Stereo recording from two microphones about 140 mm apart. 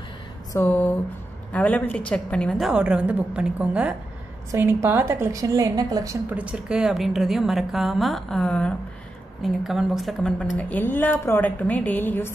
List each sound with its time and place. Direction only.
0.5 s a woman's voice: 15° left (ahead or behind); by 3.9 s 5° right (ahead or behind)
4.5 s a woman's voice: 20° right (ahead or behind)
6.3 s a woman's voice: 5° right (ahead or behind); by 12.4 s 15° left (ahead or behind)